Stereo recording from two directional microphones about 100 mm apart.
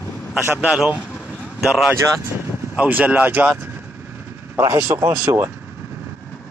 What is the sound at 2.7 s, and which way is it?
Speech, 15° right (ahead or behind).